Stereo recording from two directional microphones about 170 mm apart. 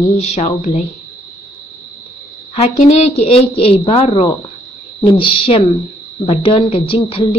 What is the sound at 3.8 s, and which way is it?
A woman's voice, 30° left (ahead or behind).